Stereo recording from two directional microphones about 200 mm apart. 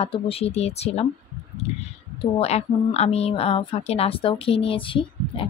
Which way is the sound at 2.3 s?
30° left (ahead or behind).